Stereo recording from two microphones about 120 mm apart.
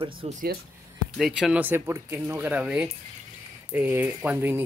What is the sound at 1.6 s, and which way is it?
Speech, 15° right (ahead or behind).